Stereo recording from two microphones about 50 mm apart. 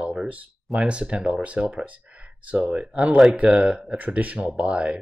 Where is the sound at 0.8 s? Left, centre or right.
Right.